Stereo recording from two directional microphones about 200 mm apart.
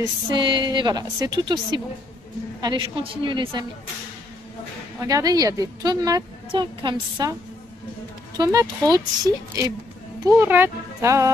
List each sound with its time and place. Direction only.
0.3 s a woman's voice: 25° right (ahead or behind)
5.0 s a woman's voice: 20° right (ahead or behind)
8.4 s a woman's voice: 15° right (ahead or behind)